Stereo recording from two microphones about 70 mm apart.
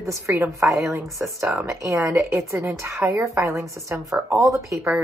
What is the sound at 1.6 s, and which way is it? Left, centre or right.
Speech, right.